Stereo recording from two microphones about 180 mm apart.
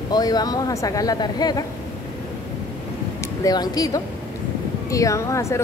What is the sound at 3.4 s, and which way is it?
Speech, 20° left (ahead or behind).